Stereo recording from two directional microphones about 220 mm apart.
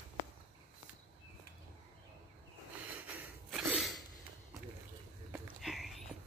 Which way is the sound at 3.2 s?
Centre (ahead or behind).